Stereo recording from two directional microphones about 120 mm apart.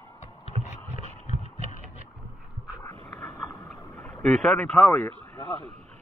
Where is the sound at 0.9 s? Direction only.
70° left (ahead or behind).